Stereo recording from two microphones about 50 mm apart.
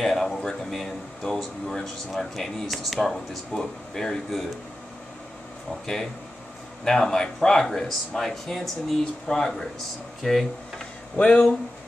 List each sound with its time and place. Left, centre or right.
0.0 s speech: centre
6.8 s speech: centre
11.1 s speech: left